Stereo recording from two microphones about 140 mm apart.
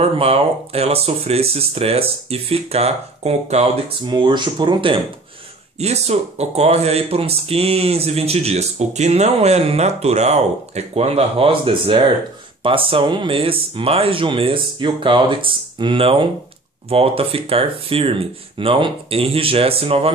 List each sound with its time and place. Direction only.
0.0 s speech: 45° right (ahead or behind)
4.0 s speech: 30° right (ahead or behind)
5.8 s speech: 50° right (ahead or behind)